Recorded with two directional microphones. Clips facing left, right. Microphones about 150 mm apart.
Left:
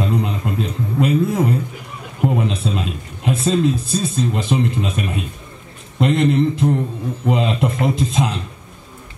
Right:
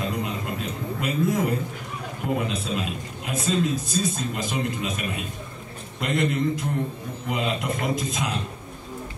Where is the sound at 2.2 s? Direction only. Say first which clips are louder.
Left 7 dB; 30° left (ahead or behind).